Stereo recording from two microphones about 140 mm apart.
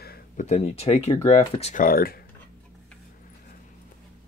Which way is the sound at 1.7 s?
85° left.